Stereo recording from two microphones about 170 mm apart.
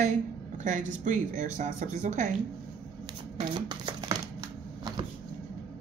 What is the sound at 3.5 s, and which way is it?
Speech, 25° right (ahead or behind).